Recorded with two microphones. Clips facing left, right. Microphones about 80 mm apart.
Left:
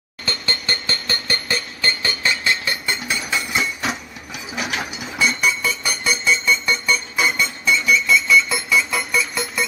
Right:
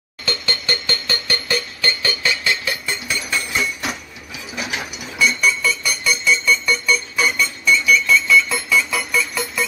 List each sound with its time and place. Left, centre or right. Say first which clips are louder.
0.2 s a sound: right 1 dB; left
3.1 s hammer: right 1 dB; centre
5.2 s music: right 2 dB; left
8.1 s alarm clock: right 1 dB; centre
9.3 s music: right 1 dB; centre